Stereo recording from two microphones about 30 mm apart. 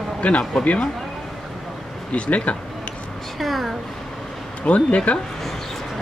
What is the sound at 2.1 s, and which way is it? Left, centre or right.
Speech, left.